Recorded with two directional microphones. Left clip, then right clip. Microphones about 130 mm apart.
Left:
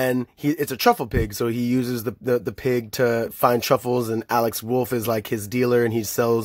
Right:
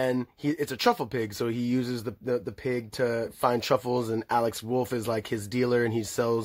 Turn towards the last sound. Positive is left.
turn(degrees=35)  # may be behind; listen again after turning